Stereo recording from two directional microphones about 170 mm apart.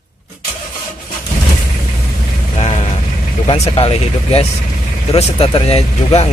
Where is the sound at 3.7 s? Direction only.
35° left (ahead or behind).